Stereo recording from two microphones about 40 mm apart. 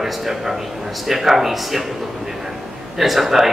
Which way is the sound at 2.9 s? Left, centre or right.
Centre.